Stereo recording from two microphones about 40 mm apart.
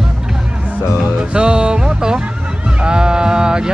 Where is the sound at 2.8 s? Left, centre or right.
Right.